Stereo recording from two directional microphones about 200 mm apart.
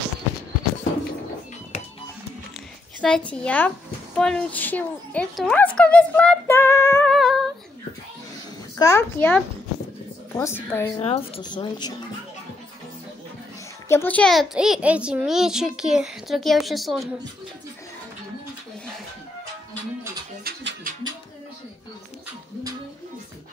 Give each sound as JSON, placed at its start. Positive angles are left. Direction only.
{"t": 3.0, "sound": "speech", "side_deg": 5}
{"t": 7.2, "sound": "humming", "side_deg": 0}
{"t": 8.7, "sound": "speech", "side_deg": 15}
{"t": 11.0, "sound": "a woman's voice", "side_deg": 30}
{"t": 13.8, "sound": "a child's voice", "side_deg": 10}
{"t": 20.4, "sound": "a sound", "side_deg": -50}